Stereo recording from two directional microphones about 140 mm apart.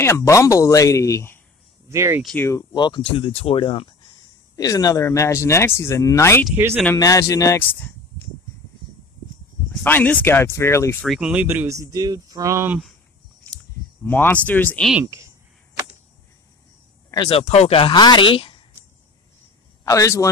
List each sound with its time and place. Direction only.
0.0 s speech: 20° left (ahead or behind)
1.9 s speech: 20° right (ahead or behind)
2.7 s speech: 35° left (ahead or behind)
4.6 s speech: 25° left (ahead or behind)
9.7 s speech: 10° left (ahead or behind)
11.0 s speech: 5° right (ahead or behind)
11.4 s speech: 20° right (ahead or behind)
14.0 s speech: 15° left (ahead or behind)
15.0 s a sound: 20° right (ahead or behind)
17.3 s speech: 45° left (ahead or behind)
19.8 s a man's voice: 20° left (ahead or behind)